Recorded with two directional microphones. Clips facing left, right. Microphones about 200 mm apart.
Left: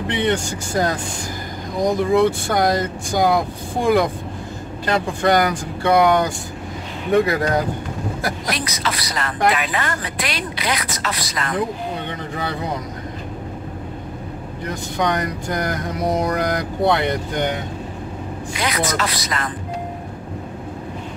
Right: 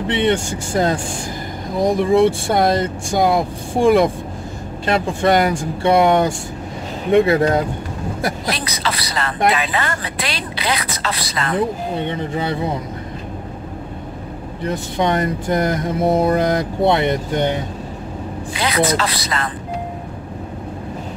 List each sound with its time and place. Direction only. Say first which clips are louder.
0.1 s speech: right 3 dB; 25° right (ahead or behind)
14.6 s speech: right 3 dB; 25° right (ahead or behind)